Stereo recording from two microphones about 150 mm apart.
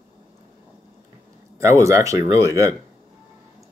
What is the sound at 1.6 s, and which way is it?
Speech, 20° right (ahead or behind).